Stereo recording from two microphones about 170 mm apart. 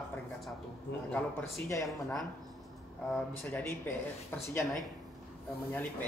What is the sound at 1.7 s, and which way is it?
Speech, 15° left (ahead or behind).